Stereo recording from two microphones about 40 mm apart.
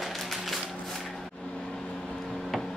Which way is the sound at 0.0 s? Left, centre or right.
Centre.